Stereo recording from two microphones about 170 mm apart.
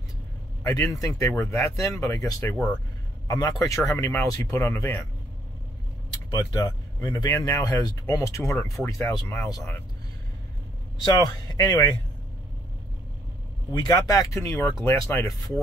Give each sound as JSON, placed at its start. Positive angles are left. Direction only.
{"t": 0.7, "sound": "speech", "side_deg": 20}
{"t": 6.0, "sound": "speech", "side_deg": 25}
{"t": 11.0, "sound": "speech", "side_deg": 25}
{"t": 13.7, "sound": "speech", "side_deg": 20}